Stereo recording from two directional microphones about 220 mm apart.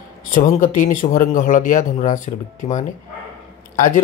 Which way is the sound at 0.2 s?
40° left (ahead or behind).